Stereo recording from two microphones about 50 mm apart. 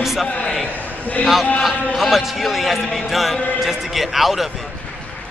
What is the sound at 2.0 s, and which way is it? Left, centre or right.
A man's voice, centre.